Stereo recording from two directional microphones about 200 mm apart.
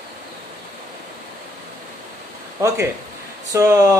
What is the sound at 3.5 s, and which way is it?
Speech, 15° right (ahead or behind).